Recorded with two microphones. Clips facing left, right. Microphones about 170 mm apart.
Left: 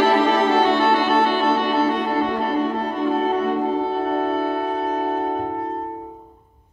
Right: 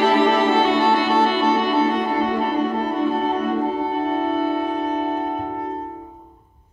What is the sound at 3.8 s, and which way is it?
Music, 15° right (ahead or behind).